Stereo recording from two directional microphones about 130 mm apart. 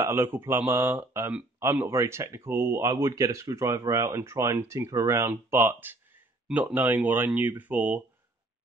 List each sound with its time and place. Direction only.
0.0 s speech: 20° right (ahead or behind)